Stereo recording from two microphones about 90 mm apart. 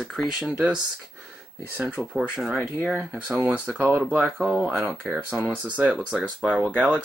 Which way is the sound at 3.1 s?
15° right (ahead or behind).